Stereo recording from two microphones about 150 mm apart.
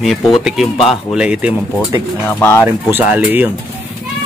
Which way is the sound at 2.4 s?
15° left (ahead or behind).